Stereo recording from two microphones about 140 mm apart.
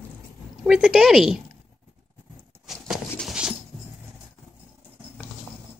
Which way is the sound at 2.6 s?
Centre (ahead or behind).